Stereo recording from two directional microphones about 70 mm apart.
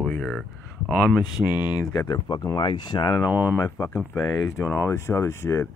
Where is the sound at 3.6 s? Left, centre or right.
Left.